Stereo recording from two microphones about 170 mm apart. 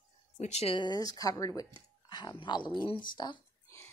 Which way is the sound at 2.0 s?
25° left (ahead or behind).